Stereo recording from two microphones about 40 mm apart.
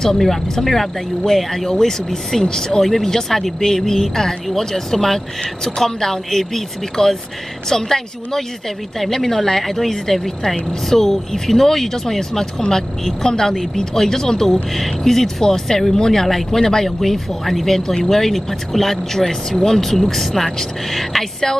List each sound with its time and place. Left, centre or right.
0.0 s speech: centre
2.4 s speech: centre
2.8 s speech: centre